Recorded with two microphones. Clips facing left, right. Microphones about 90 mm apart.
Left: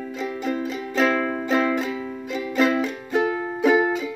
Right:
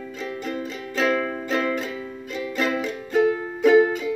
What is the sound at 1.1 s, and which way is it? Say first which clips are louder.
Music: left 1 dB; 25° left (ahead or behind).